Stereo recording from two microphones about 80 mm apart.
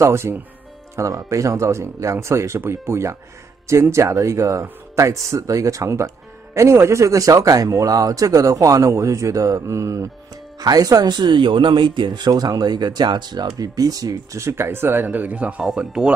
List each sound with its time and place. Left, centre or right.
0.0 s speech: right
10.6 s speech: right; by 16.1 s centre